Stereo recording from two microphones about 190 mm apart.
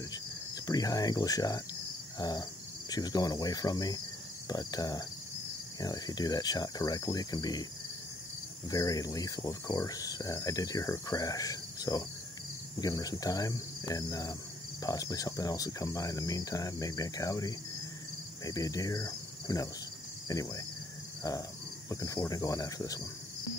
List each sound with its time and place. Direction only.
0.7 s speech: 20° left (ahead or behind)
2.1 s cricket: 20° left (ahead or behind)
2.9 s speech: 20° left (ahead or behind)
8.6 s speech: 20° left (ahead or behind)
18.4 s cricket: 20° left (ahead or behind)
20.2 s speech: 20° left (ahead or behind)